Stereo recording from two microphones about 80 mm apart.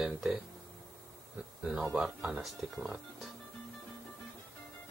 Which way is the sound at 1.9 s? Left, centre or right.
Centre.